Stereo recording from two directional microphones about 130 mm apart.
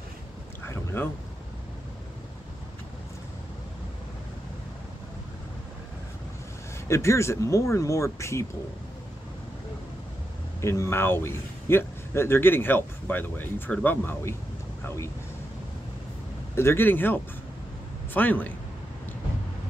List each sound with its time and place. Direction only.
0.7 s boat: 15° left (ahead or behind)
6.9 s speech: 20° left (ahead or behind)
10.6 s speech: 20° left (ahead or behind)
16.5 s speech: 20° left (ahead or behind)